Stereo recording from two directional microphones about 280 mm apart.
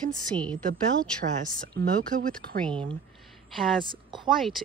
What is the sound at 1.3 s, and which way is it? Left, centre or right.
Speech, right.